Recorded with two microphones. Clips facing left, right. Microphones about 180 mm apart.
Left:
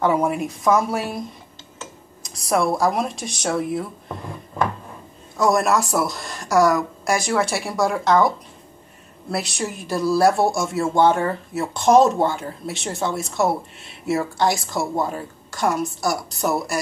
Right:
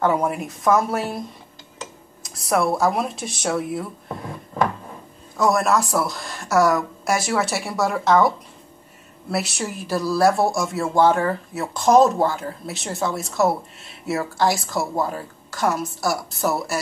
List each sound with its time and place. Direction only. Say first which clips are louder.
0.0 s speech: left 1 dB; centre (ahead or behind)
2.2 s speech: even; centre (ahead or behind)
5.4 s speech: left 1 dB; centre (ahead or behind)
9.3 s speech: even; 5° right (ahead or behind)